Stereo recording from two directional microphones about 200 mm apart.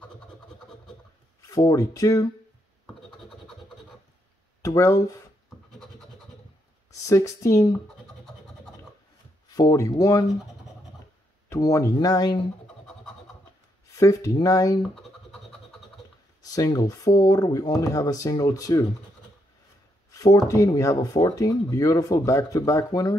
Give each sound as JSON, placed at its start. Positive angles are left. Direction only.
{"t": 1.4, "sound": "speech", "side_deg": 15}
{"t": 4.6, "sound": "speech", "side_deg": 15}
{"t": 6.9, "sound": "speech", "side_deg": 15}
{"t": 9.5, "sound": "speech", "side_deg": 15}
{"t": 11.4, "sound": "speech", "side_deg": 15}
{"t": 13.9, "sound": "speech", "side_deg": 15}
{"t": 16.4, "sound": "speech", "side_deg": 20}
{"t": 20.1, "sound": "speech", "side_deg": 15}